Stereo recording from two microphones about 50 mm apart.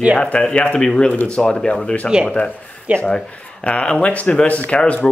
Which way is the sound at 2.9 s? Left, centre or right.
Right.